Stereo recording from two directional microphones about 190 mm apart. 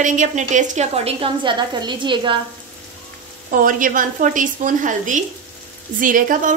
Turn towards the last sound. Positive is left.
turn(degrees=-45)  # may be behind; listen again after turning